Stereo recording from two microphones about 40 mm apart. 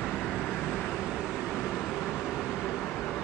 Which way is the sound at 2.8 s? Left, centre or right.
Left.